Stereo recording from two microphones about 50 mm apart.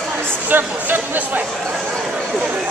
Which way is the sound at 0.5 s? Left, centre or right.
Right.